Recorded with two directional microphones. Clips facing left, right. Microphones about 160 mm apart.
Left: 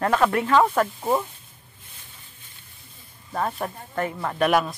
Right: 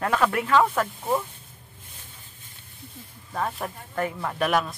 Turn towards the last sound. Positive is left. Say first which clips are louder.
# left 3 dB
turn(degrees=5)  # may be behind; listen again after turning